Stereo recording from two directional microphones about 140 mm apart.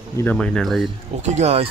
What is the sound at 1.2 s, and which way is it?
Speech, 50° right (ahead or behind).